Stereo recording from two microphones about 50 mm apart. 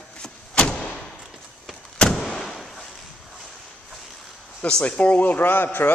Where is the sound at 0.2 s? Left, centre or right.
Centre.